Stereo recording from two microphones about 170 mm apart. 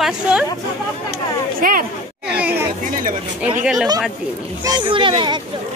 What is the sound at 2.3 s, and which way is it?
Speech, 10° right (ahead or behind).